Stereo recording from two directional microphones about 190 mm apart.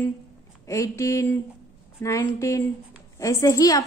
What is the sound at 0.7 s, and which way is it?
A woman's voice, 15° left (ahead or behind).